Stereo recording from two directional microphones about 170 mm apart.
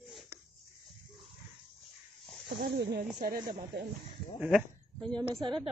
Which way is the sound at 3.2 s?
60° right (ahead or behind).